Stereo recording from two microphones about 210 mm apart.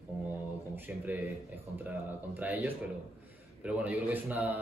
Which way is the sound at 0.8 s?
10° right (ahead or behind).